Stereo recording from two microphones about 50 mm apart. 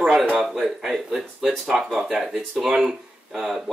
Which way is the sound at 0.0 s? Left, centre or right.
Centre.